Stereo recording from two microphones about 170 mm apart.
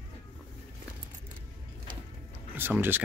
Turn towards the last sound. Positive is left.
turn(degrees=-10)  # may be behind; listen again after turning